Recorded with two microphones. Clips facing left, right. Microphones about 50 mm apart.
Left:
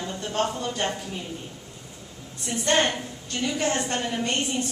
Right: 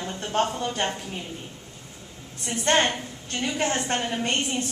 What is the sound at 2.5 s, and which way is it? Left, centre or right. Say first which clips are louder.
Speech: right 1 dB; right.